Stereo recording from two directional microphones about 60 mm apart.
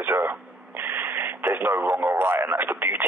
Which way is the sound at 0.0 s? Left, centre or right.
Right.